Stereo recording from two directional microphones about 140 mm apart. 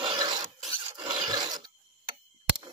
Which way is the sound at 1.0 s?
35° right (ahead or behind).